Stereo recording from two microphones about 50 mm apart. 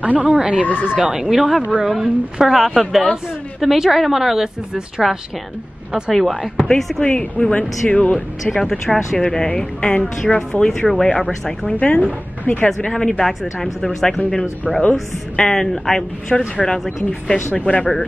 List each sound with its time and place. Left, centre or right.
0.0 s speech: right
1.1 s a woman's voice: centre
6.1 s a woman's voice: centre
7.2 s speech: centre
8.5 s speech: centre
11.8 s speech: left
12.6 s speech: centre